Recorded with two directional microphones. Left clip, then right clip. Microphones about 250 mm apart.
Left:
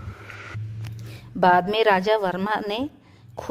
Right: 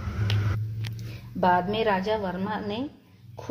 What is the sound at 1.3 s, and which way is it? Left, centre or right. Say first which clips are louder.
A woman's voice: left 5 dB; left.